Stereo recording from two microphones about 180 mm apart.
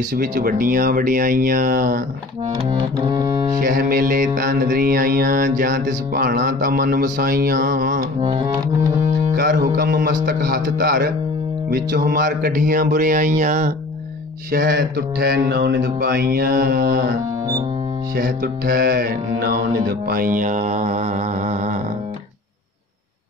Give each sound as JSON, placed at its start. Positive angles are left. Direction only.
{"t": 0.2, "sound": "mantra", "side_deg": -50}
{"t": 2.7, "sound": "music", "side_deg": -25}
{"t": 3.5, "sound": "mantra", "side_deg": -50}
{"t": 8.2, "sound": "music", "side_deg": -30}
{"t": 9.3, "sound": "music", "side_deg": -50}
{"t": 9.8, "sound": "mantra", "side_deg": -55}
{"t": 14.5, "sound": "mantra", "side_deg": -55}
{"t": 18.1, "sound": "mantra", "side_deg": -55}